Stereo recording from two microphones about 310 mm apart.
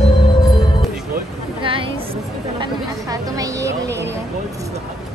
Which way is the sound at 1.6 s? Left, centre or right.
Centre.